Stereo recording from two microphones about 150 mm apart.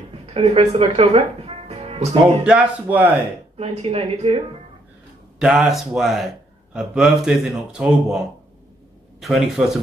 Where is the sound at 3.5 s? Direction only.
45° right (ahead or behind).